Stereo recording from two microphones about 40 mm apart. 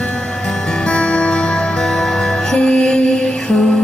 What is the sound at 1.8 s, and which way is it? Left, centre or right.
Music, centre.